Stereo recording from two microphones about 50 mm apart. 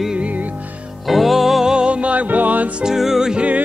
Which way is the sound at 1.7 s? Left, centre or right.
Right.